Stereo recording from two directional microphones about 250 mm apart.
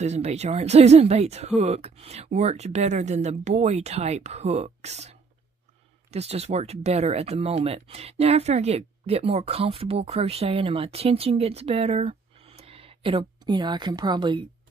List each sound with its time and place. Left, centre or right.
0.0 s speech: right